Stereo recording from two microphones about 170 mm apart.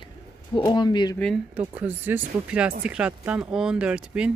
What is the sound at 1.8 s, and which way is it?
Speech, 10° right (ahead or behind).